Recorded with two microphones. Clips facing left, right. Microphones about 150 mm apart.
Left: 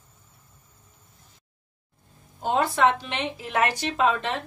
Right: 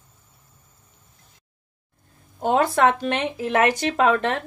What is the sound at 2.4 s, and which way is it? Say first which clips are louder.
A woman's voice: right 4 dB; 55° right (ahead or behind).